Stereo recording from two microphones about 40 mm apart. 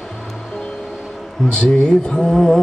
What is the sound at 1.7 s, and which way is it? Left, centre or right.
Speech, centre.